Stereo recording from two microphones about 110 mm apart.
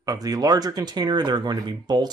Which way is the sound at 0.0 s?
35° right (ahead or behind).